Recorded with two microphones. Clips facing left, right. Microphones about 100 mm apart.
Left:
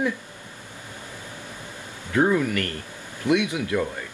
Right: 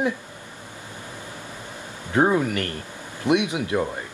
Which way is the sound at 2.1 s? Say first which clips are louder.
Right 1 dB; 25° right (ahead or behind).